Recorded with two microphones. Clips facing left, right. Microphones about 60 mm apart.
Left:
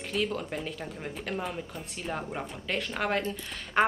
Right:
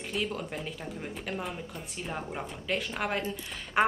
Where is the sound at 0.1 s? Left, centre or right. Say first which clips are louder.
Left 3 dB; centre.